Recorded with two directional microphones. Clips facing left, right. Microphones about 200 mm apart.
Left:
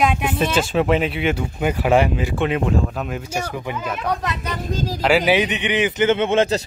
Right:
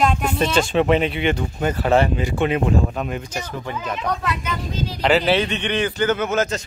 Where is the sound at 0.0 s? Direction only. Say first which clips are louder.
Even; 5° left (ahead or behind).